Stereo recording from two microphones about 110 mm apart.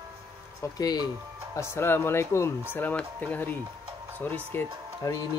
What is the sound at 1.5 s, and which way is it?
Speech, 25° left (ahead or behind).